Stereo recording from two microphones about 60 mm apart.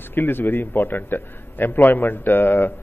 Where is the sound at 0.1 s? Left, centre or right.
Left.